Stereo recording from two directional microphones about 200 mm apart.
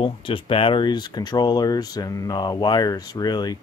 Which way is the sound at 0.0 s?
25° left (ahead or behind).